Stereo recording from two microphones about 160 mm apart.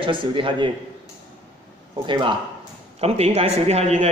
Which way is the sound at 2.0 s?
30° right (ahead or behind).